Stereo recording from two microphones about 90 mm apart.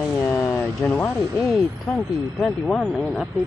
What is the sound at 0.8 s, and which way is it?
Speech, 15° left (ahead or behind).